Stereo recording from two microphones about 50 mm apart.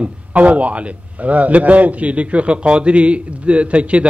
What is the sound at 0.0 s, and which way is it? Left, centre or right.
A man's voice, right.